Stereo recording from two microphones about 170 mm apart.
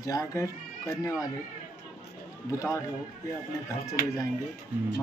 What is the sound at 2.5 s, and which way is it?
Speech, 20° left (ahead or behind).